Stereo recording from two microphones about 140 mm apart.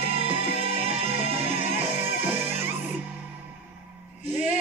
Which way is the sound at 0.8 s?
40° right (ahead or behind).